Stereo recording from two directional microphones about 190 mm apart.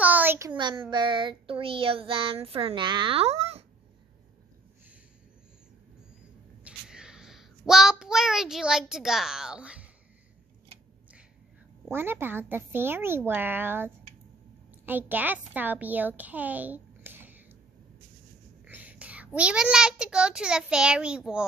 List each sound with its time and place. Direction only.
0.0 s a sound: 10° right (ahead or behind)
0.6 s child singing: 25° right (ahead or behind)
6.6 s child singing: 5° right (ahead or behind)
11.9 s a child's voice: 10° right (ahead or behind)
18.7 s a child's voice: 10° right (ahead or behind)